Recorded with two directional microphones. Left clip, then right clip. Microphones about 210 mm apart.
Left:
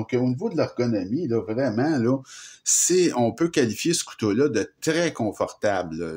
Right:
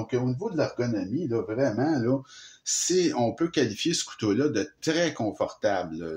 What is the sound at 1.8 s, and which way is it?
Speech, 40° left (ahead or behind).